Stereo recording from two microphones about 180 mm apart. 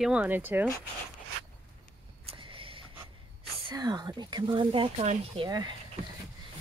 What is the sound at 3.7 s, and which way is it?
Speech, 25° right (ahead or behind).